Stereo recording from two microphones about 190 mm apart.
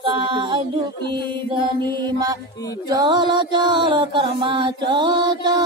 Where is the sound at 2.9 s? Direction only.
25° right (ahead or behind).